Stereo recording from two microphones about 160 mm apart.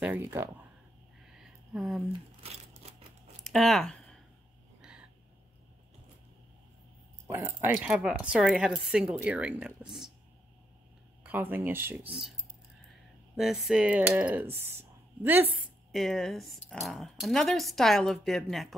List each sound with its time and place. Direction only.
0.0 s speech: 10° right (ahead or behind)
1.4 s a sound: centre (ahead or behind)
2.4 s crumpling: 40° right (ahead or behind)
3.4 s a sound: centre (ahead or behind)
7.2 s speech: 15° right (ahead or behind)
11.2 s speech: 10° right (ahead or behind)
13.4 s speech: centre (ahead or behind)
15.9 s speech: centre (ahead or behind)